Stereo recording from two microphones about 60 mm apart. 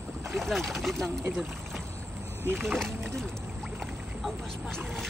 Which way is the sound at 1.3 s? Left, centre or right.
Centre.